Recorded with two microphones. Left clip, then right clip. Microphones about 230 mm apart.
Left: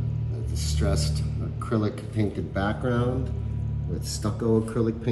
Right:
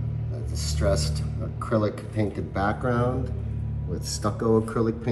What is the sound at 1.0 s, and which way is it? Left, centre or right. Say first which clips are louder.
A man's voice: even; centre.